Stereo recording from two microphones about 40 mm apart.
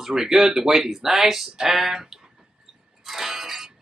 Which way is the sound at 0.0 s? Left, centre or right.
Centre.